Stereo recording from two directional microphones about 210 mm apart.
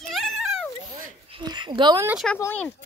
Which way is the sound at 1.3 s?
20° right (ahead or behind).